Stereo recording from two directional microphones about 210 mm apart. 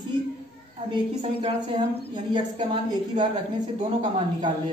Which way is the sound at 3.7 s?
25° right (ahead or behind).